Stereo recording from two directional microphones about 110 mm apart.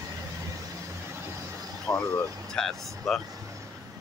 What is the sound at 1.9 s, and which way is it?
Speech, 20° left (ahead or behind).